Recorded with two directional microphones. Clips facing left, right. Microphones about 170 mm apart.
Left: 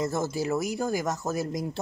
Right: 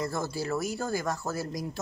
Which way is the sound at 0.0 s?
20° left (ahead or behind).